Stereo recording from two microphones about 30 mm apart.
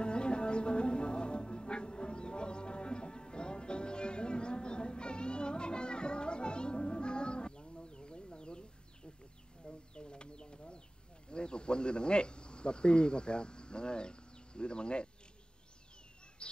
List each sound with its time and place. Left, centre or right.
0.0 s music: left
9.7 s a sound: left
11.2 s cricket: left